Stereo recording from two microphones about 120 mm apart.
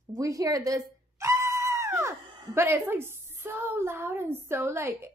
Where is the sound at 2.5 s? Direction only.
20° right (ahead or behind).